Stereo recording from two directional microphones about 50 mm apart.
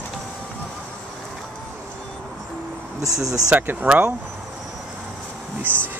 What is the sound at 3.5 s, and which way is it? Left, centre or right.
Speech, right.